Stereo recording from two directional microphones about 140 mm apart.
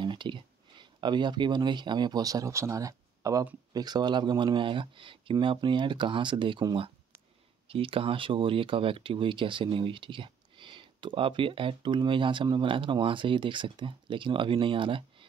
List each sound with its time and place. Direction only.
0.0 s speech: 35° right (ahead or behind)